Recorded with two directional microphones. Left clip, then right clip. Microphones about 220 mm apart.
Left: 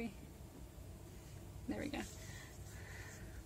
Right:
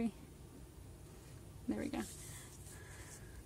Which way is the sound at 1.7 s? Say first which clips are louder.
Right 2 dB; 25° right (ahead or behind).